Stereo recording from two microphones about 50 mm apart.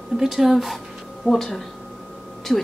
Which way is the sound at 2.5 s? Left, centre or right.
Left.